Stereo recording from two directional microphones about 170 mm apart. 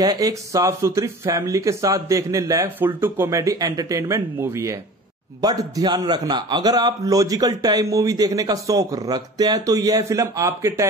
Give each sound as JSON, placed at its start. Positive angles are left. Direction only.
{"t": 0.0, "sound": "a man's voice", "side_deg": -20}